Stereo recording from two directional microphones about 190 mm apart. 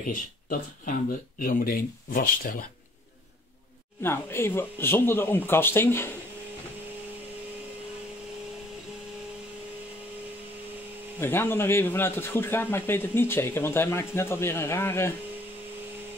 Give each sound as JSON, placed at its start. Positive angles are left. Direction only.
{"t": 0.0, "sound": "speech", "side_deg": 45}
{"t": 4.0, "sound": "a man's voice", "side_deg": 15}
{"t": 11.1, "sound": "a man's voice", "side_deg": 10}